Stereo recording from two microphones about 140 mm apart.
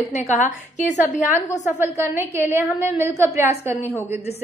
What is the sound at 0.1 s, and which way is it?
A woman's voice, 60° left (ahead or behind).